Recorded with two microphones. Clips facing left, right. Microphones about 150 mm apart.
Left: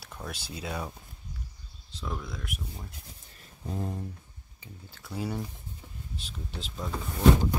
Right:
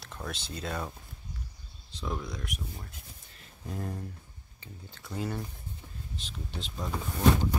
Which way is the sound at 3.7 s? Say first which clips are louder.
Left 2 dB; 20° left (ahead or behind).